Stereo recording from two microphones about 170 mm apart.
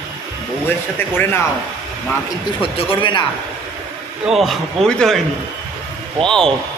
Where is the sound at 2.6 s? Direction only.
30° left (ahead or behind).